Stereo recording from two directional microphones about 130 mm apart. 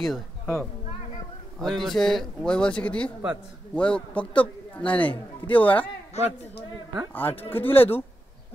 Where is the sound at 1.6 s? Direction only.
Centre (ahead or behind).